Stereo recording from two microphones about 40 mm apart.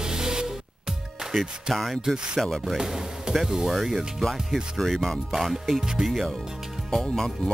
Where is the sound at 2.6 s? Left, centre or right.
Centre.